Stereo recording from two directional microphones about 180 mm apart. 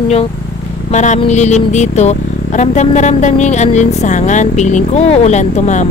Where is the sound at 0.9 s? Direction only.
40° left (ahead or behind).